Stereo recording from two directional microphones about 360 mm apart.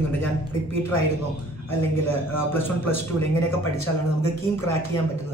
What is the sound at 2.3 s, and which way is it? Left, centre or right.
Speech, centre.